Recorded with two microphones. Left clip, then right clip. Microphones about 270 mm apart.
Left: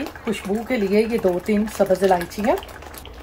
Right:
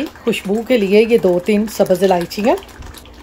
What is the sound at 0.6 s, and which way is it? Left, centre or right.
Speech, right.